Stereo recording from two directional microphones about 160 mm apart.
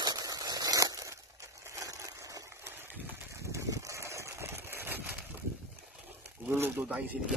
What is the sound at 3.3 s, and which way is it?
Engine, 20° right (ahead or behind).